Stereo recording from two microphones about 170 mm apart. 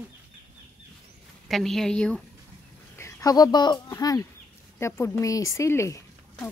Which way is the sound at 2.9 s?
20° left (ahead or behind).